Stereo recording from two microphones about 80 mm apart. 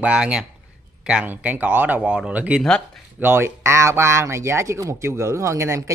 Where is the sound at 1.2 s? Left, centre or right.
Centre.